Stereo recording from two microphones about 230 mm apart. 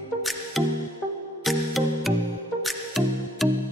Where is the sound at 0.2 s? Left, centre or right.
Centre.